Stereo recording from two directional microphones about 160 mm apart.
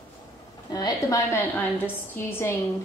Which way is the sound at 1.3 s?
15° left (ahead or behind).